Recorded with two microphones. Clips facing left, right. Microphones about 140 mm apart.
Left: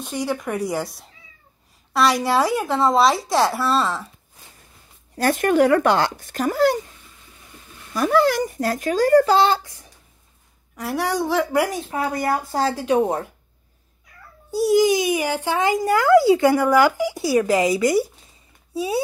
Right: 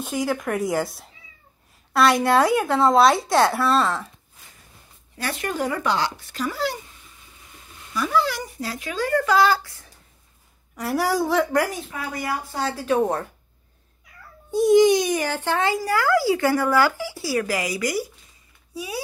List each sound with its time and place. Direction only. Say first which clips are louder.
0.0 s speech: even; centre (ahead or behind)
5.1 s speech: left 9 dB; 45° left (ahead or behind)
5.5 s speech: left 8 dB; 65° left (ahead or behind); by 6.8 s 50° left (ahead or behind)
7.9 s speech: left 5 dB; 50° left (ahead or behind); by 9.8 s 20° left (ahead or behind)
10.8 s speech: right 1 dB; centre (ahead or behind)
11.5 s a child's voice: left 2 dB; 15° left (ahead or behind)
11.9 s speech: left 6 dB; 40° left (ahead or behind)
12.7 s a child's voice: right 1 dB; 15° left (ahead or behind)
14.5 s a child's voice: right 2 dB; 5° left (ahead or behind); by 18.0 s 25° left (ahead or behind)
18.7 s a sound: left 8 dB; 25° left (ahead or behind)